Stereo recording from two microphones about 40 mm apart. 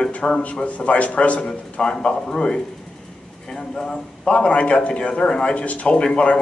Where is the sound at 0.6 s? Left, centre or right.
Left; by 4.0 s centre.